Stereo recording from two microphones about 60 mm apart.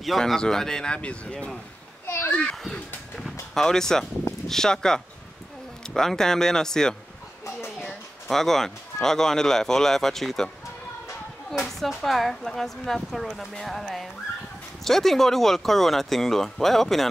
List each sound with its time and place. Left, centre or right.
0.2 s speech: centre
2.0 s children playing: left
3.5 s speech: centre
8.3 s speech: centre
11.6 s speech: centre